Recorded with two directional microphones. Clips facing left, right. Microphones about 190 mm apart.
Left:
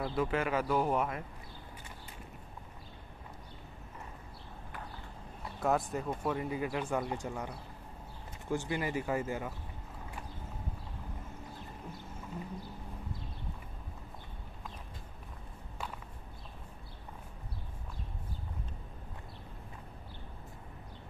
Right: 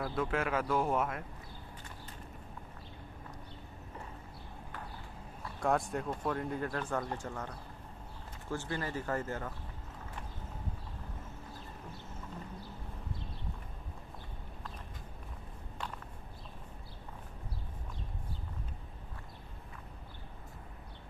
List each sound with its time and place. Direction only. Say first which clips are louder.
0.1 s speech: left 2 dB; 5° left (ahead or behind)
5.6 s speech: even; centre (ahead or behind)